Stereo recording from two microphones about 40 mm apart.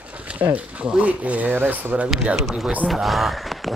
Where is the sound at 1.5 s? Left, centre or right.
Right.